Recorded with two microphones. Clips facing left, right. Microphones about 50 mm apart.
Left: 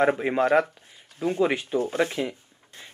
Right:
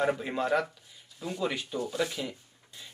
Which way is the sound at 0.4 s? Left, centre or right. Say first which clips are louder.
Left 7 dB; left.